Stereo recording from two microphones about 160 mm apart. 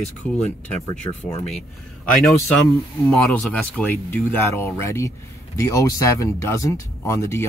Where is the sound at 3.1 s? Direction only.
5° left (ahead or behind).